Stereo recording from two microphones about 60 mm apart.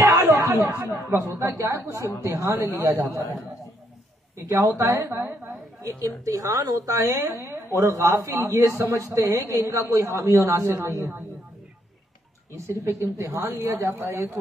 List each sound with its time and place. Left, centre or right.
0.2 s chatter: right
1.1 s speech: right
2.8 s speech: right
4.5 s speech: right
4.7 s speech: right
5.3 s a woman's voice: centre
5.8 s speech: right
12.5 s speech: right
13.5 s speech: right
13.7 s speech: right